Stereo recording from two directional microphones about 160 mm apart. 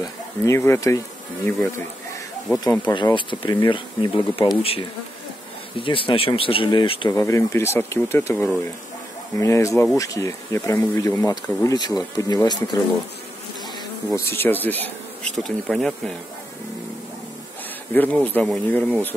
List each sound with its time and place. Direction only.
0.0 s speech: 15° left (ahead or behind)
2.9 s speech: 30° left (ahead or behind)
5.8 s speech: 35° left (ahead or behind)
14.1 s speech: 15° left (ahead or behind)
15.3 s bee: centre (ahead or behind)
17.9 s speech: 10° left (ahead or behind)